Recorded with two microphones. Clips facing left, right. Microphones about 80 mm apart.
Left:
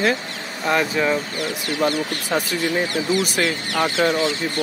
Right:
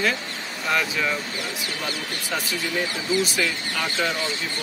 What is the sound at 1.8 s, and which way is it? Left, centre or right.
Speech, left.